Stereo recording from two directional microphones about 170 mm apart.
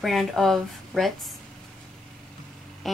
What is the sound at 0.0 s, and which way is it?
Speech, centre (ahead or behind).